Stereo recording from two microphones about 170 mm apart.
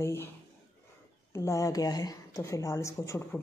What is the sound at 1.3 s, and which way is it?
Speech, 15° left (ahead or behind).